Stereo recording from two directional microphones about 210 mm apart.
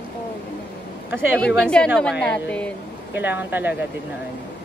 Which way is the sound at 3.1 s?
10° right (ahead or behind).